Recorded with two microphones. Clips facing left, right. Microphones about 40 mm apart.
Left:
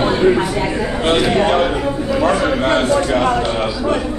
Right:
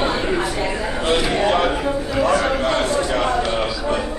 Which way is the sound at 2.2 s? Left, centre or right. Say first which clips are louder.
Left 2 dB; left.